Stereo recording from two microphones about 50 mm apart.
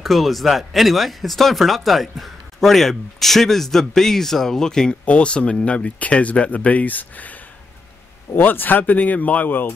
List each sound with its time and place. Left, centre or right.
0.0 s speech: centre; by 7.3 s left
8.4 s speech: left